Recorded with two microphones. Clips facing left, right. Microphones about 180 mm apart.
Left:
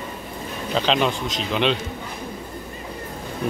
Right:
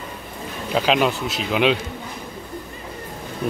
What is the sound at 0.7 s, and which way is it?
A man's voice, 5° right (ahead or behind).